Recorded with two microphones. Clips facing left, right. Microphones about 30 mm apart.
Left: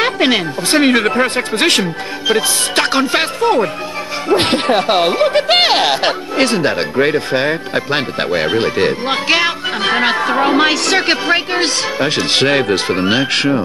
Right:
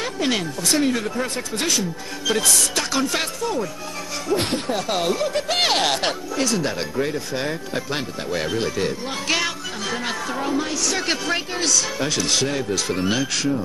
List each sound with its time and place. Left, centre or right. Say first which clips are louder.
0.3 s speech: left 8 dB; left
0.8 s speech: left 10 dB; left
2.2 s speech: left 6 dB; left
2.7 s speech: left 8 dB; left
4.3 s speech: left 10 dB; left
4.8 s speech: left 9 dB; left
5.6 s speech: left 7 dB; left
6.3 s speech: left 10 dB; left
11.0 s speech: left 9 dB; left
12.8 s speech: left 8 dB; left